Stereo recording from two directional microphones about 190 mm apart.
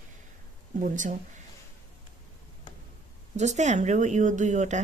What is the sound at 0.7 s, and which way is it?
Speech, 40° right (ahead or behind).